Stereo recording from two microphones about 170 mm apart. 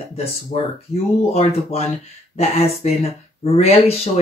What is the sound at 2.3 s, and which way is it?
Speech, 35° left (ahead or behind).